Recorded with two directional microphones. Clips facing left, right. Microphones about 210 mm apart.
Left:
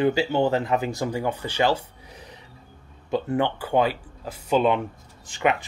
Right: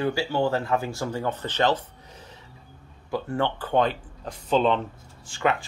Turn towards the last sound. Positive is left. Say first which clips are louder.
# left 2 dB
turn(degrees=20)  # may be behind; listen again after turning